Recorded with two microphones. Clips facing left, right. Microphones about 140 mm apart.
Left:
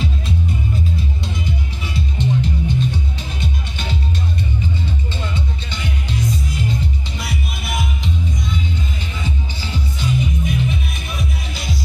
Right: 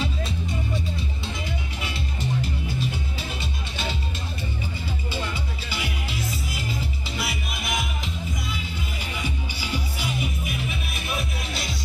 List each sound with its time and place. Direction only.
2.0 s music: 5° right (ahead or behind)
5.1 s music: 10° right (ahead or behind)
9.2 s music: 10° right (ahead or behind)